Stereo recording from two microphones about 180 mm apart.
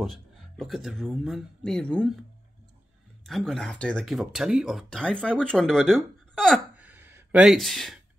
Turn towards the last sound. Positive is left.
turn(degrees=0)  # may be behind; listen again after turning